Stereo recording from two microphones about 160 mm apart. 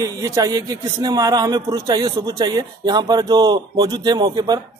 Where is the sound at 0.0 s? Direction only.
20° right (ahead or behind).